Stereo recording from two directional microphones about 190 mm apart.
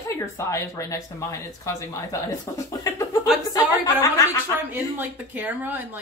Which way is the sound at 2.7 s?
15° left (ahead or behind).